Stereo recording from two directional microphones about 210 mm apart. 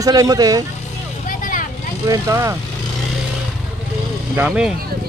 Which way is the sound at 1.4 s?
40° left (ahead or behind).